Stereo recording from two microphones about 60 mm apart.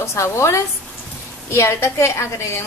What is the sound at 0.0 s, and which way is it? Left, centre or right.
A woman's voice, left.